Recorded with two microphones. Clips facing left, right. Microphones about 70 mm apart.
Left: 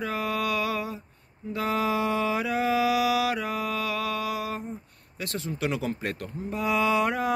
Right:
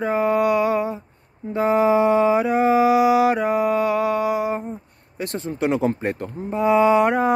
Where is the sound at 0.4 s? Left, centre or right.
Right.